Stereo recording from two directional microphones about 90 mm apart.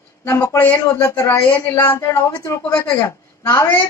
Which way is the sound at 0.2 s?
30° left (ahead or behind).